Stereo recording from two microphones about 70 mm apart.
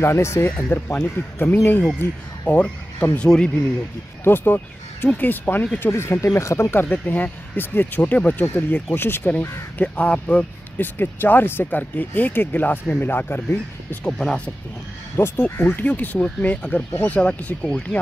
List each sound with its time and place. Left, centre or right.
0.0 s speech: left
0.5 s speech: left
4.2 s speech: left
5.8 s speech: left
6.7 s speech: left
9.8 s speech: centre
11.0 s speech: left
14.1 s speech: centre
15.1 s speech: left
15.5 s speech: left